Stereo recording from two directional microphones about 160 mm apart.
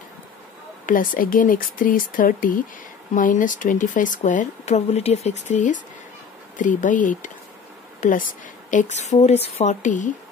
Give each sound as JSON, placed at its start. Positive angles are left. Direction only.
{"t": 0.8, "sound": "speech", "side_deg": 60}